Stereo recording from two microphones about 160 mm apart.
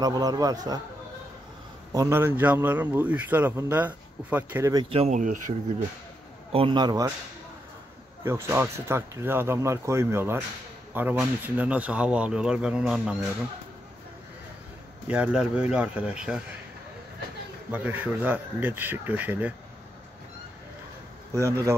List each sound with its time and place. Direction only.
0.0 s a man's voice: 25° right (ahead or behind)
1.9 s a man's voice: 20° right (ahead or behind)
4.7 s speech: 35° right (ahead or behind); by 5.4 s 50° right (ahead or behind)
6.5 s a man's voice: 30° right (ahead or behind)
8.2 s a man's voice: 15° right (ahead or behind)
15.0 s a man's voice: 10° right (ahead or behind)
17.6 s a man's voice: 10° right (ahead or behind)
21.4 s a man's voice: 20° right (ahead or behind)